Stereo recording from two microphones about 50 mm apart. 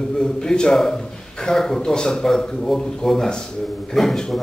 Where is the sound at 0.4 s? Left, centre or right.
Centre.